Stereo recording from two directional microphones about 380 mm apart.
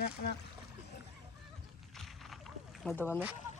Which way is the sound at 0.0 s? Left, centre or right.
Left.